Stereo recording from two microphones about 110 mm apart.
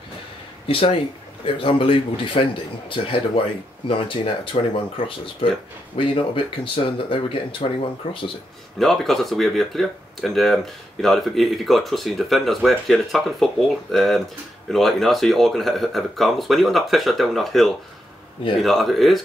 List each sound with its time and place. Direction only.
0.7 s speech: 55° left (ahead or behind)
8.7 s speech: centre (ahead or behind)